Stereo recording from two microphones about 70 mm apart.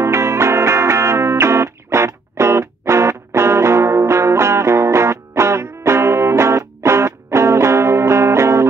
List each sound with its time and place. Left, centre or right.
0.0 s music: right